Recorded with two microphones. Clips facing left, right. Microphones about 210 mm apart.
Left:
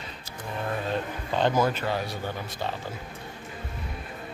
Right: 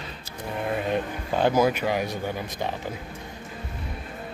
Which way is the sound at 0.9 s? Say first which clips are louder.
Right 3 dB; 10° right (ahead or behind).